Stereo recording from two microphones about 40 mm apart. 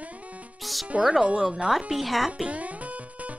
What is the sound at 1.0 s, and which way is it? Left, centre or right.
Speech, right.